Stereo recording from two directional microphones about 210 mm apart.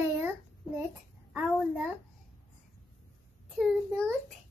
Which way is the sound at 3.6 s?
Centre (ahead or behind).